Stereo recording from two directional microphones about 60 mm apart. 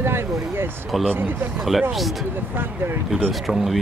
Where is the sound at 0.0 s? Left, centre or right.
Right.